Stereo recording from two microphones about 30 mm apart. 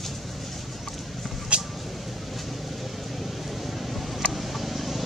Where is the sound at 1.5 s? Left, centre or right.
Right.